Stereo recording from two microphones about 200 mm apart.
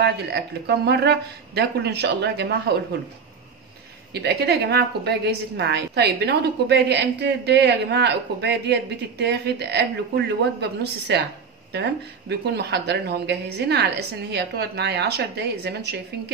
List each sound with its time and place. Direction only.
0.0 s a woman's voice: 55° right (ahead or behind)
4.1 s a woman's voice: 55° right (ahead or behind)